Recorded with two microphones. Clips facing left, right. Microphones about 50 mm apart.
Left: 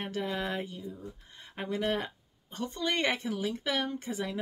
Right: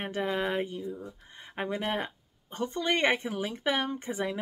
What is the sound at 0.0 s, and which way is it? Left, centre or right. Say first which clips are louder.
Speech: right 3 dB; right.